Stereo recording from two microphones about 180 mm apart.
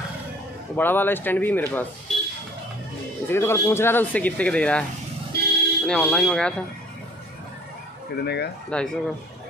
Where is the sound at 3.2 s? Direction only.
15° left (ahead or behind).